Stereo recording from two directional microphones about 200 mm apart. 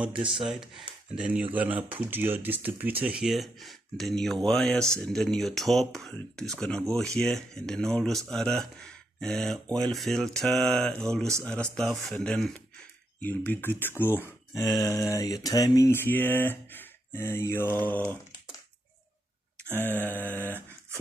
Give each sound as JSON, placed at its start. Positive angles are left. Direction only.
{"t": 0.1, "sound": "speech", "side_deg": -25}
{"t": 0.4, "sound": "speech", "side_deg": 0}
{"t": 19.8, "sound": "speech", "side_deg": 10}